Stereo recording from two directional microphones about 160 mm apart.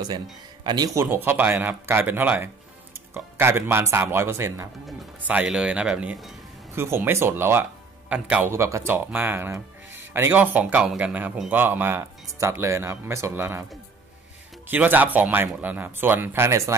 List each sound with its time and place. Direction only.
0.7 s speech: 25° right (ahead or behind)
14.7 s speech: 10° right (ahead or behind)